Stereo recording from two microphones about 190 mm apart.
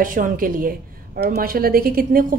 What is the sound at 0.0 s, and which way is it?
A woman's voice, 45° right (ahead or behind).